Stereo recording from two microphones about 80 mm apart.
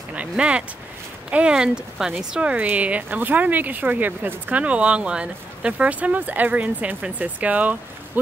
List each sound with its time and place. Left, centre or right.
0.1 s speech: centre